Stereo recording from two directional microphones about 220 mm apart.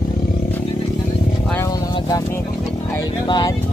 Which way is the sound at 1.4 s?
10° left (ahead or behind).